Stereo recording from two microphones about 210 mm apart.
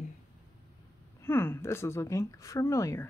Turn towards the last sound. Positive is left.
turn(degrees=10)  # may be behind; listen again after turning